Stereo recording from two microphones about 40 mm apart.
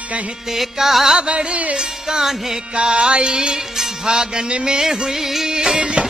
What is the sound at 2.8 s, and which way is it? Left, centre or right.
Music, right.